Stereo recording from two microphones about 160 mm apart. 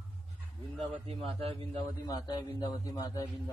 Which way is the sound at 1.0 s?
35° right (ahead or behind).